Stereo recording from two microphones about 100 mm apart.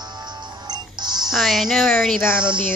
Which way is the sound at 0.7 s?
45° right (ahead or behind).